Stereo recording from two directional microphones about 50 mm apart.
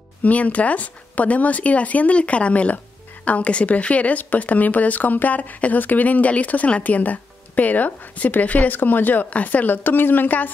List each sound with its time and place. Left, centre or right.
0.2 s speech: left